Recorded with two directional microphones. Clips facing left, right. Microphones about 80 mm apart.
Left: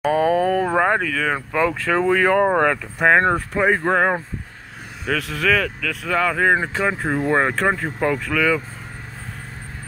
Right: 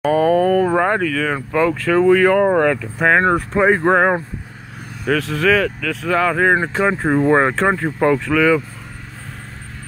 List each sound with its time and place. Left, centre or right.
0.0 s a sound: centre
0.7 s speech: centre
3.3 s speech: centre
5.0 s speech: centre
6.7 s speech: right; by 8.6 s centre